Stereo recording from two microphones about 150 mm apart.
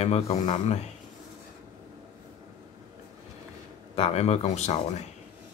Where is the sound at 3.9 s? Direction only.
45° left (ahead or behind).